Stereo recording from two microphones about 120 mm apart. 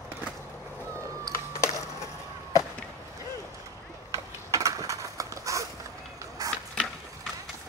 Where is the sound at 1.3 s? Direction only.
25° left (ahead or behind).